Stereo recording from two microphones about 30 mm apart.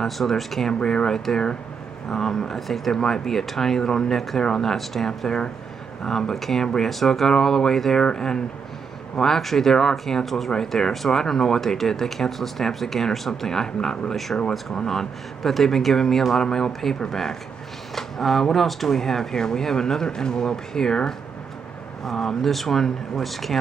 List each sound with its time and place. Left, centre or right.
0.0 s speech: centre
0.7 s speech: left; by 6.6 s centre
6.6 s speech: centre
9.2 s speech: centre
10.2 s speech: centre
10.5 s speech: centre
14.1 s speech: centre
16.3 s speech: left
22.0 s speech: centre